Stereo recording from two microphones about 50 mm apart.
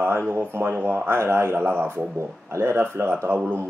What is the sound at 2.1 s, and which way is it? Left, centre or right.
Speech, right.